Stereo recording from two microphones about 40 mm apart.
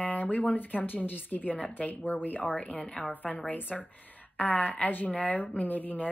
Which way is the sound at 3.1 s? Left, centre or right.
Left.